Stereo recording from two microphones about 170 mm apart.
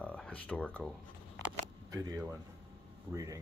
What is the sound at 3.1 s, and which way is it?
Speech, 20° right (ahead or behind).